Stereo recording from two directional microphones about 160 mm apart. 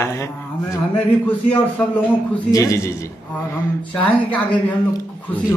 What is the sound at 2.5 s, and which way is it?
Speech, 20° left (ahead or behind).